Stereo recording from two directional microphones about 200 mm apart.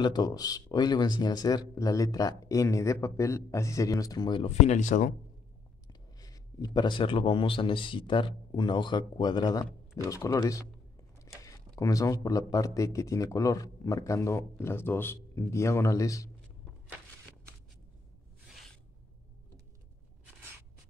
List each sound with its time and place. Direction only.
0.0 s speech: 20° left (ahead or behind); by 5.1 s 40° left (ahead or behind)
5.9 s speech: 20° left (ahead or behind)